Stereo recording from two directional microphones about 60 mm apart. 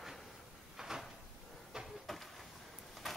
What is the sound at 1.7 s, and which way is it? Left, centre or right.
Train, centre.